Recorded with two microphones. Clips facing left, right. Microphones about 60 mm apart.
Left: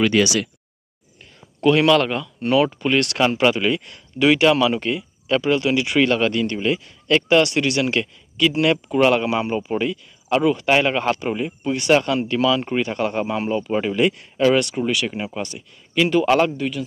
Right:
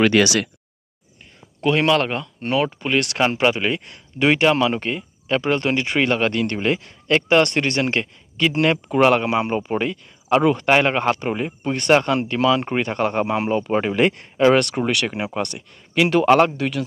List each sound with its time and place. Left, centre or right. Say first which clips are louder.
0.0 s speech: right 2 dB; right
1.6 s speech: left 2 dB; centre
2.6 s speech: left 2 dB; centre
3.0 s speech: even; right
6.3 s speech: even; right
16.5 s speech: right 1 dB; right